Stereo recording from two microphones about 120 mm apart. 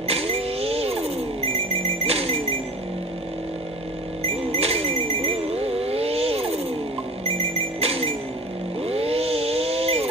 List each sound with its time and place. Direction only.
0.0 s a sound: 55° right (ahead or behind)
4.2 s telephone bell ringing: 60° right (ahead or behind)
7.2 s music: 60° right (ahead or behind)
8.8 s chainsaw: 55° right (ahead or behind)